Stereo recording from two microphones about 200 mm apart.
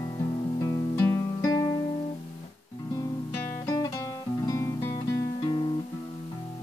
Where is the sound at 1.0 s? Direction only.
15° left (ahead or behind).